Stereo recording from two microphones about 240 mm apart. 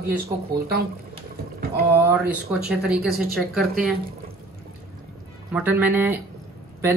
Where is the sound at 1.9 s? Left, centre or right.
Centre.